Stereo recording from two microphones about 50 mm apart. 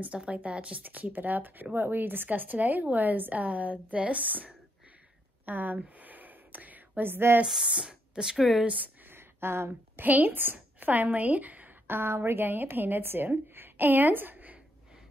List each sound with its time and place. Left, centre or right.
0.0 s speech: right
0.8 s speech: right
5.4 s whispering: right
7.1 s a woman's voice: right
7.4 s speech: centre
8.6 s speech: right
9.1 s a sound: right
10.0 s speech: right
11.9 s a woman's voice: right
13.3 s a sound: right